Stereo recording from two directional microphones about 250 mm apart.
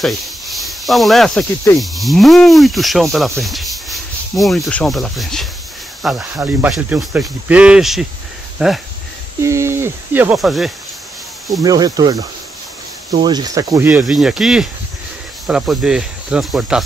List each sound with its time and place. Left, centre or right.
0.0 s speech: centre
11.6 s speech: centre